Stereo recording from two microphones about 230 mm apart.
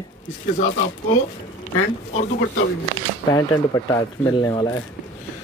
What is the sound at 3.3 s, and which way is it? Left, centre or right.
Speech, centre.